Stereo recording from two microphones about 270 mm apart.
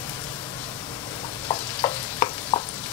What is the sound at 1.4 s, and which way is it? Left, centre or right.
Stir, centre.